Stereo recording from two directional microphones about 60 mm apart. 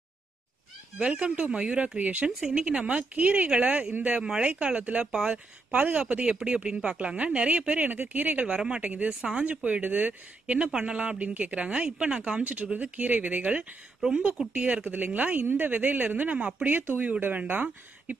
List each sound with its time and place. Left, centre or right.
0.9 s speech: right
5.0 s speech: centre
5.3 s speech: right